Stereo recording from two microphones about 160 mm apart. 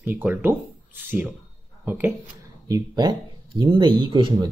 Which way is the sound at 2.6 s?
25° right (ahead or behind).